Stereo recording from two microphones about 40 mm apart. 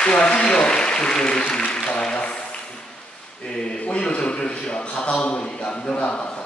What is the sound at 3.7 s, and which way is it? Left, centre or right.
A man's voice, left.